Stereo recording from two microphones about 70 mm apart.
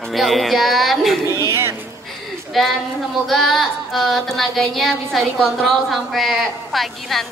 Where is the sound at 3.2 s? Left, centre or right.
Centre.